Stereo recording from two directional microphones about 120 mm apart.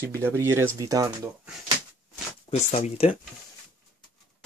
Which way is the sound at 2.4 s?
65° left (ahead or behind).